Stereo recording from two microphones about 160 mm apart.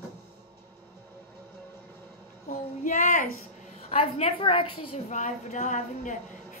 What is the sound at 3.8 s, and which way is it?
A woman's voice, 40° left (ahead or behind).